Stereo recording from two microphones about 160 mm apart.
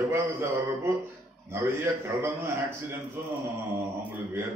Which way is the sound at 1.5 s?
15° right (ahead or behind).